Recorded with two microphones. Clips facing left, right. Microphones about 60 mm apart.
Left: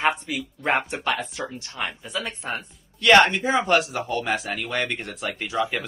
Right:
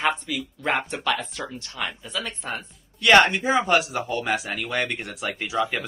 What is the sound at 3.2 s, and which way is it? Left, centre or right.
Speech, right.